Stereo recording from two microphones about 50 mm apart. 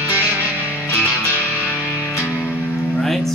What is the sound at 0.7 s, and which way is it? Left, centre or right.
Music, left.